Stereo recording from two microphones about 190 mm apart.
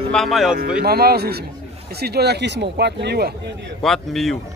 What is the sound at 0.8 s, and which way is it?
Speech, 55° right (ahead or behind).